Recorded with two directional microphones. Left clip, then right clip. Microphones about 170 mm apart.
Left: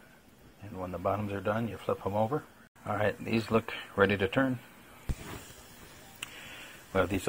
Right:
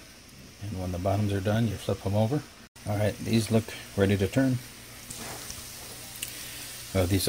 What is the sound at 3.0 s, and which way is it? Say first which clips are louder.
Speech: right 2 dB; 10° right (ahead or behind).